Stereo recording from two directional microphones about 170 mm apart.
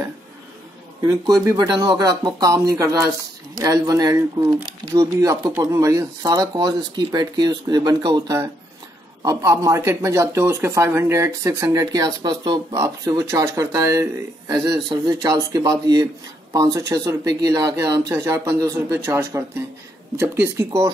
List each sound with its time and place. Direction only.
1.0 s speech: 20° right (ahead or behind)